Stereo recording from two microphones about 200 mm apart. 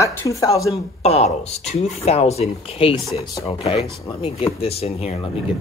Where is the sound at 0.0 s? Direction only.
15° left (ahead or behind).